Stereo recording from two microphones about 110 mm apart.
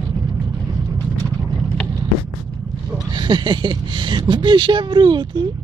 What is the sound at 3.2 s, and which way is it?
Speech, 45° right (ahead or behind).